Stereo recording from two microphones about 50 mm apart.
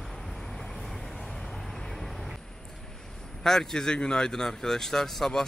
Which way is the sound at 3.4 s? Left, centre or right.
Centre.